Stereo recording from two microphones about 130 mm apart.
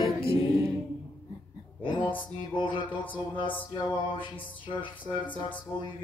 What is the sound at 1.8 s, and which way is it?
Music, 40° left (ahead or behind).